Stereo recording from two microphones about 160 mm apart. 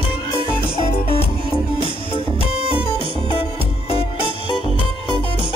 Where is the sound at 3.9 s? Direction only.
35° left (ahead or behind).